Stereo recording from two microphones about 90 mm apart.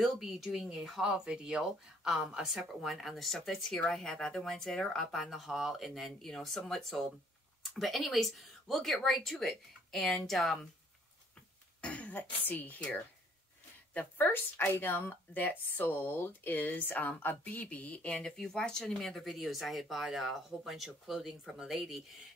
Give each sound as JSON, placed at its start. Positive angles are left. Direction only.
{"t": 0.0, "sound": "speech", "side_deg": 0}
{"t": 11.8, "sound": "a woman's voice", "side_deg": 15}